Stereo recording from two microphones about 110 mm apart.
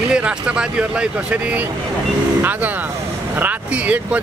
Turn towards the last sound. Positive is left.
turn(degrees=-10)  # may be behind; listen again after turning